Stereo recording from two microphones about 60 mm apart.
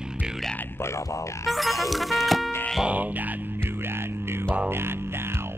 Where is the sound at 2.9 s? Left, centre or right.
Right.